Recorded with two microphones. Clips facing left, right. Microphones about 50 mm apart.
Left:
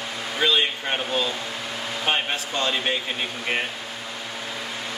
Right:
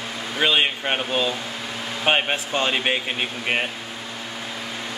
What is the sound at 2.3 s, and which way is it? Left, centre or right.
Speech, right.